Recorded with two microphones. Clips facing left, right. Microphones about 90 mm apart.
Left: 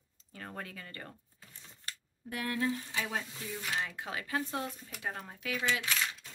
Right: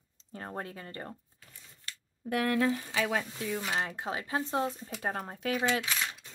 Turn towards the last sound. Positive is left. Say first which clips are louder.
# even
turn(degrees=-20)  # may be behind; listen again after turning